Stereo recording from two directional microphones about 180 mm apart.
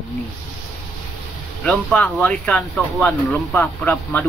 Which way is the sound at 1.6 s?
5° left (ahead or behind).